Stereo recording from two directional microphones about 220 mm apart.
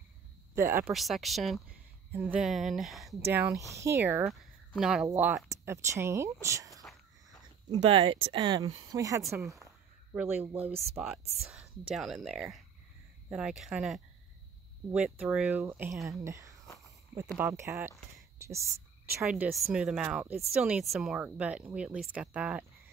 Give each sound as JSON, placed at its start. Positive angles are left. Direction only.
{"t": 0.6, "sound": "speech", "side_deg": -10}
{"t": 0.9, "sound": "speech", "side_deg": 0}
{"t": 3.3, "sound": "speech", "side_deg": -10}
{"t": 7.7, "sound": "speech", "side_deg": -25}
{"t": 9.6, "sound": "a sound", "side_deg": -10}
{"t": 10.5, "sound": "speech", "side_deg": -25}
{"t": 11.4, "sound": "speech", "side_deg": 0}